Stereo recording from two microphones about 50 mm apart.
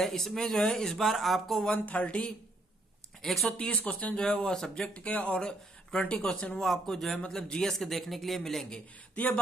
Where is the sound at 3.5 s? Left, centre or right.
Left.